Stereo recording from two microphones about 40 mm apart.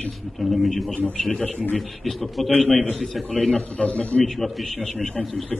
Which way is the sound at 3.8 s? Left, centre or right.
Left.